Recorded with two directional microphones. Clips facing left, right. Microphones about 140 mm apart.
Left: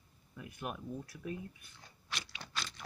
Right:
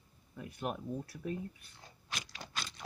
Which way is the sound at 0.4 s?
35° right (ahead or behind).